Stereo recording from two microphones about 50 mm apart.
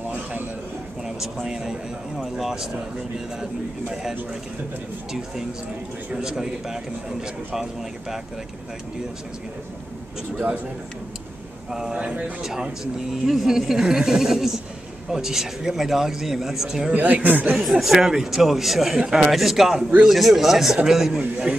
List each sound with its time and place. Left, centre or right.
1.0 s a man's voice: centre
6.1 s a man's voice: centre
11.7 s a man's voice: centre
16.9 s speech: right
17.6 s a man's voice: centre